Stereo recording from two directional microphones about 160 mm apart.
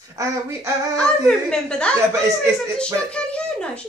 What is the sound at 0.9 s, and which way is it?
Speech, 5° left (ahead or behind).